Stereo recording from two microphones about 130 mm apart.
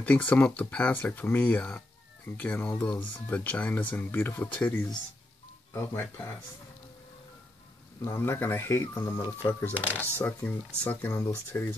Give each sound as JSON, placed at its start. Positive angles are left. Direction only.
{"t": 0.0, "sound": "speech", "side_deg": 10}
{"t": 8.0, "sound": "speech", "side_deg": 20}